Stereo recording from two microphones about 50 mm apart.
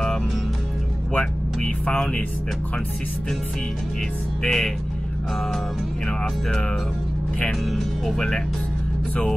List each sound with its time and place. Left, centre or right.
1.1 s speech: centre
4.4 s speech: centre
6.0 s speech: centre
7.6 s speech: centre